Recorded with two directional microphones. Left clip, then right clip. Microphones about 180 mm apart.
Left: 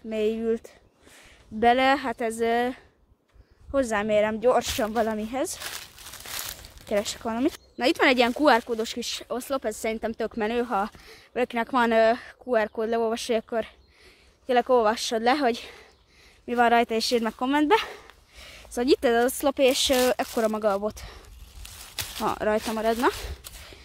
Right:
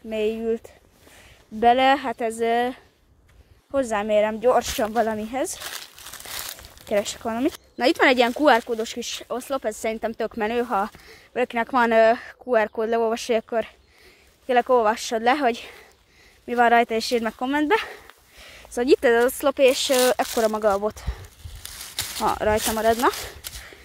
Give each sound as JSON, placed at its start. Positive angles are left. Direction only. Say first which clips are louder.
{"t": 0.1, "sound": "speech", "louder": "right 2 dB", "side_deg": 10}
{"t": 4.6, "sound": "speech", "louder": "right 3 dB", "side_deg": -10}
{"t": 5.6, "sound": "a sound", "louder": "right 2 dB", "side_deg": -25}
{"t": 6.2, "sound": "crumpling", "louder": "right 1 dB", "side_deg": -10}
{"t": 7.7, "sound": "speech", "louder": "right 3 dB", "side_deg": -10}
{"t": 18.4, "sound": "speech", "louder": "right 3 dB", "side_deg": 0}
{"t": 21.6, "sound": "a sound", "louder": "right 4 dB", "side_deg": -20}
{"t": 22.2, "sound": "speech", "louder": "right 4 dB", "side_deg": 5}